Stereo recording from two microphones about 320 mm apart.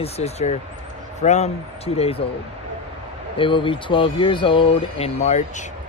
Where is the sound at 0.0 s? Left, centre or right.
Centre.